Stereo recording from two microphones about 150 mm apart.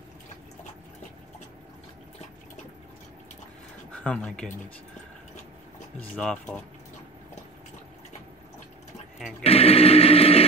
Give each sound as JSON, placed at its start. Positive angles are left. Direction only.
{"t": 3.9, "sound": "speech", "side_deg": 5}
{"t": 5.9, "sound": "speech", "side_deg": 5}
{"t": 9.4, "sound": "a sound", "side_deg": 40}